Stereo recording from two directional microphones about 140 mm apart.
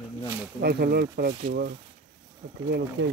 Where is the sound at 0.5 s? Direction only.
90° right.